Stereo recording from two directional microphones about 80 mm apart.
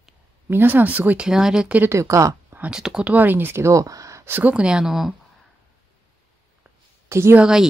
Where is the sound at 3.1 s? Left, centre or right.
Right.